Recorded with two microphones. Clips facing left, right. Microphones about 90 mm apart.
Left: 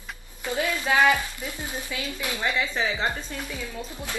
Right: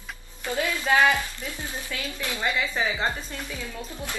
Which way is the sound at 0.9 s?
5° left (ahead or behind).